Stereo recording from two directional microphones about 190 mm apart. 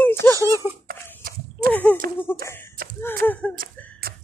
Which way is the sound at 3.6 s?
50° right (ahead or behind).